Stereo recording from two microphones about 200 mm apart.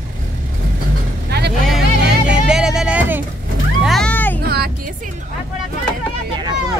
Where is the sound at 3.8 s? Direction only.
5° left (ahead or behind).